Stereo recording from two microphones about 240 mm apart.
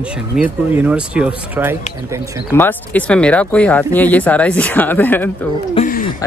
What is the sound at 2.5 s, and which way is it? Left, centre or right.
Speech, centre.